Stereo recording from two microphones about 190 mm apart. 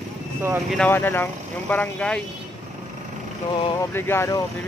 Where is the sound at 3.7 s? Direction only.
10° left (ahead or behind).